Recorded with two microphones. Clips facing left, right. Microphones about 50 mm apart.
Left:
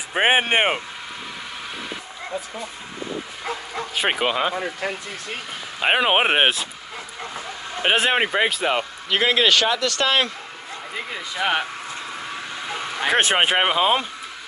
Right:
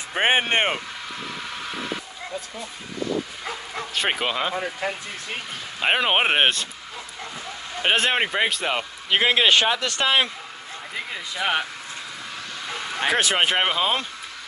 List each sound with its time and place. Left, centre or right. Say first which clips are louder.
0.1 s speech: left 2 dB; centre
2.3 s speech: left 4 dB; centre
3.9 s speech: left 3 dB; centre
5.8 s speech: left 2 dB; centre
7.8 s speech: left 2 dB; centre
9.1 s a man's voice: even; centre
11.0 s speech: left 2 dB; centre
12.6 s a sound: even; centre
13.1 s speech: left 3 dB; left
13.4 s speech: left 3 dB; centre